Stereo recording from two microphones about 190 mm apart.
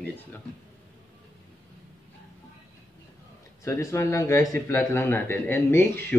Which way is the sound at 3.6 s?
15° left (ahead or behind).